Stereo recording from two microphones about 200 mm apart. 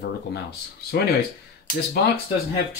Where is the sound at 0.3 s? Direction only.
55° left (ahead or behind).